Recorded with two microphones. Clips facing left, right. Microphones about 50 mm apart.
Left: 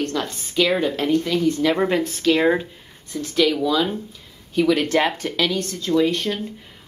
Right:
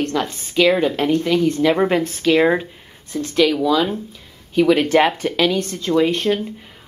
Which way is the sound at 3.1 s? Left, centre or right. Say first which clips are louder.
Right 4 dB; right.